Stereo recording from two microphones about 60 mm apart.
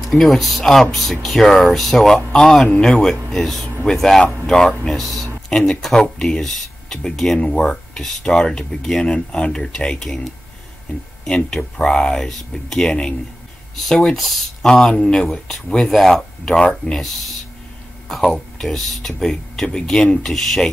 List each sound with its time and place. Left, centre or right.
0.0 s speech: centre
11.2 s speech: centre